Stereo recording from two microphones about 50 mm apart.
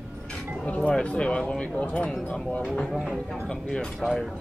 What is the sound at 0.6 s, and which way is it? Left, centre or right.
Speech, left.